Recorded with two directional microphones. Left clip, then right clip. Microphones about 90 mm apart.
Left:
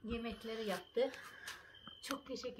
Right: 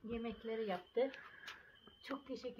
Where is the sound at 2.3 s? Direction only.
15° right (ahead or behind).